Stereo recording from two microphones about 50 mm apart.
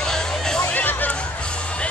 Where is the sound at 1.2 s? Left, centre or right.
Left.